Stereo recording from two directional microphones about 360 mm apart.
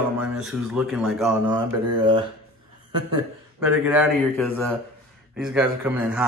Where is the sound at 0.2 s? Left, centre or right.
Centre.